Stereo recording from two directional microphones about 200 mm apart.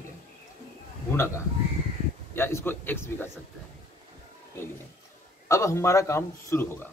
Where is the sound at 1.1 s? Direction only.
15° left (ahead or behind).